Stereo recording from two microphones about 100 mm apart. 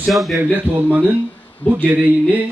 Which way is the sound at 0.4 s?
20° right (ahead or behind).